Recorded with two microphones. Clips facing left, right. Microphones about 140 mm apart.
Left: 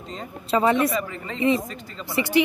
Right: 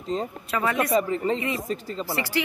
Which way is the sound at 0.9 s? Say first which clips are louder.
Right 6 dB; 35° right (ahead or behind).